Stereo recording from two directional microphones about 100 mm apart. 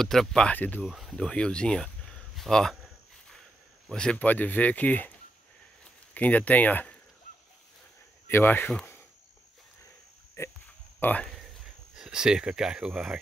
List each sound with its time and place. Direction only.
0.0 s speech: 5° left (ahead or behind)
0.6 s speech: 15° left (ahead or behind)
0.8 s speech: 5° right (ahead or behind)
1.1 s speech: 10° left (ahead or behind)
3.9 s speech: 10° left (ahead or behind)
6.1 s speech: 15° left (ahead or behind)
8.3 s speech: 20° left (ahead or behind)
10.4 s speech: 30° left (ahead or behind)
11.9 s speech: 5° right (ahead or behind)